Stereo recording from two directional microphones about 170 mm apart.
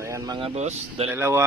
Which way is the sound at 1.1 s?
15° right (ahead or behind).